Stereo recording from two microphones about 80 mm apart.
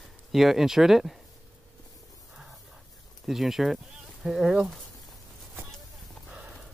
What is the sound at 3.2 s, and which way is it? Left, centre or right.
Speech, centre.